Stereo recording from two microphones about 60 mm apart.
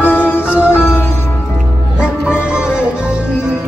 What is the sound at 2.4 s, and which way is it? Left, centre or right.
Music, centre.